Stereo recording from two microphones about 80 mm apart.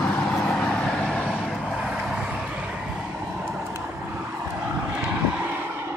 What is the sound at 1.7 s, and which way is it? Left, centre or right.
Vehicle, centre.